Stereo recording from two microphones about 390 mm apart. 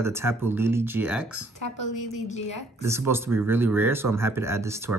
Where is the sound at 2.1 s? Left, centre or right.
Centre.